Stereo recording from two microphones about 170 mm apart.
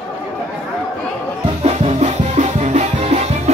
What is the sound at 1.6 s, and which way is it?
Music, 40° right (ahead or behind).